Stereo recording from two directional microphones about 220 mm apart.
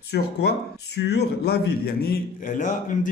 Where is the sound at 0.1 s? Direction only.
50° left (ahead or behind).